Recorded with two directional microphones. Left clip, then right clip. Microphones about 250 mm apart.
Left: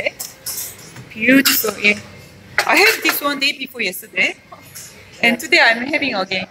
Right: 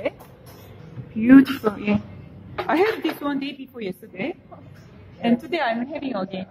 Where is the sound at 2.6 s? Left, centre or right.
Centre.